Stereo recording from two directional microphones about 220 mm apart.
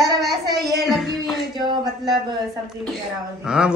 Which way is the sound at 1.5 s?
20° right (ahead or behind).